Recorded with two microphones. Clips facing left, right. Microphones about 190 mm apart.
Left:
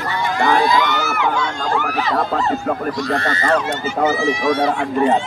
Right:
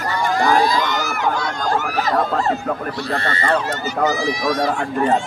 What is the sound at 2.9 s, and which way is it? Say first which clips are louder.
Speech: left 3 dB; 30° right (ahead or behind).